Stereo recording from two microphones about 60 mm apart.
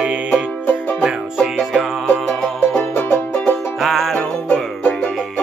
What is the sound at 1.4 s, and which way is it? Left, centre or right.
Music, centre.